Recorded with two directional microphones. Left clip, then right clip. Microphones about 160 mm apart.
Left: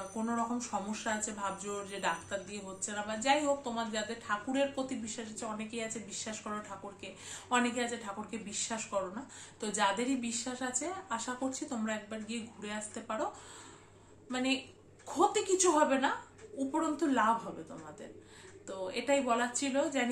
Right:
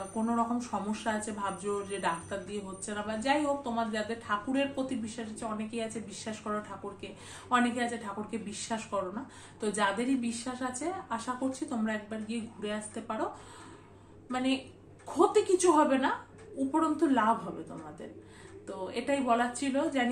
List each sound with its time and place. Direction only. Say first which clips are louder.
0.2 s speech: right 4 dB; centre (ahead or behind)
14.3 s speech: right 2 dB; centre (ahead or behind)
18.7 s speech: even; 5° left (ahead or behind)